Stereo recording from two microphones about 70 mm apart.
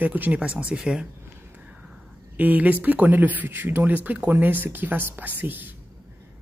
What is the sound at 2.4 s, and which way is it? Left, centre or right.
Speech, right.